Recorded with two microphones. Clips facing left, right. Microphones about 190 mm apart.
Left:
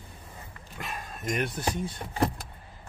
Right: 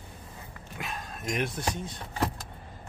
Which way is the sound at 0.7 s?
Centre (ahead or behind).